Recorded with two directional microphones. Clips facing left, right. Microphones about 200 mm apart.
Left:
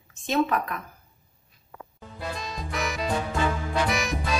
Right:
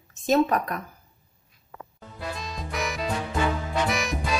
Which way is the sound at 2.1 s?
Centre (ahead or behind).